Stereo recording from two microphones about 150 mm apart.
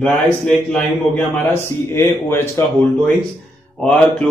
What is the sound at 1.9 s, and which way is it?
Speech, 15° left (ahead or behind).